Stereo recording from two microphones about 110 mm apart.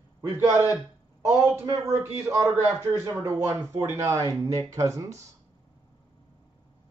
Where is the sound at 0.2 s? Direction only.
25° right (ahead or behind).